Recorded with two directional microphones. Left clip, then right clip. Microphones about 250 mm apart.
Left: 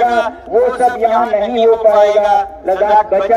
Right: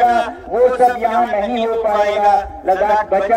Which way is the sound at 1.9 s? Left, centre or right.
Left.